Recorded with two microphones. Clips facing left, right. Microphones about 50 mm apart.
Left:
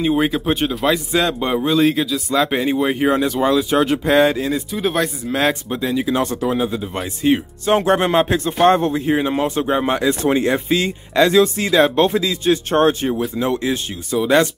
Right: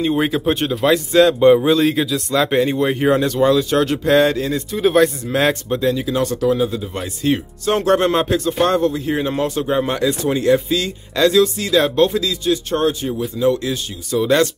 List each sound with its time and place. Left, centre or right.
0.0 s a man's voice: centre
8.6 s speech: left
9.1 s speech: centre
10.2 s speech: left
14.1 s speech: centre